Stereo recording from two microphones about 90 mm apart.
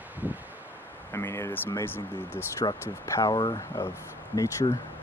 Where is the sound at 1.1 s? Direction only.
30° left (ahead or behind).